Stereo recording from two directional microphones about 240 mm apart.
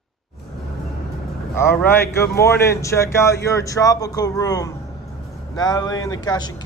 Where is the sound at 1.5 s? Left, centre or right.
Centre.